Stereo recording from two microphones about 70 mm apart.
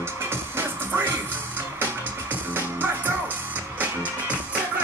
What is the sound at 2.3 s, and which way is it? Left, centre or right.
Music, right.